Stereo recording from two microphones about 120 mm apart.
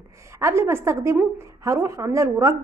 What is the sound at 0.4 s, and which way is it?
A woman's voice, 20° right (ahead or behind).